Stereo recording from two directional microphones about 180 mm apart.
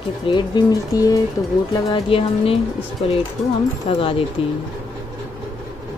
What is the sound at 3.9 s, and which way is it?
Speech, 30° left (ahead or behind).